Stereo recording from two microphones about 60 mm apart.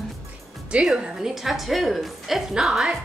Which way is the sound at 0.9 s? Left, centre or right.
Centre.